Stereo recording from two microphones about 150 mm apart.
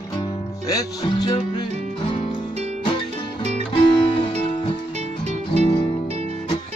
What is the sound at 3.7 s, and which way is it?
Music, 35° left (ahead or behind).